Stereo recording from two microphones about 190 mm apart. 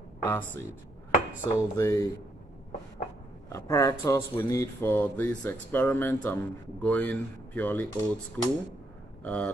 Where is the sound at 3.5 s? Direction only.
15° left (ahead or behind).